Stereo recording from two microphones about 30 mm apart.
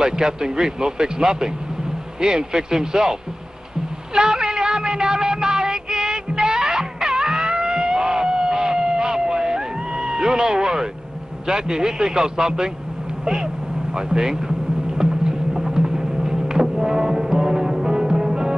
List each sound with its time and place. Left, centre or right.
0.0 s a man's voice: right
4.1 s meow: right
11.4 s a man's voice: right
15.0 s music: right